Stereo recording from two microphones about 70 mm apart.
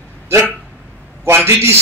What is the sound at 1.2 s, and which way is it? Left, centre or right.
Speech, right.